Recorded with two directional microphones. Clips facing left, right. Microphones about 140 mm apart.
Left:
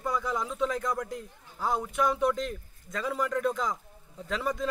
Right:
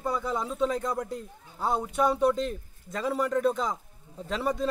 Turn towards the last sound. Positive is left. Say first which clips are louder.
# right 2 dB
turn(degrees=-30)  # may be behind; listen again after turning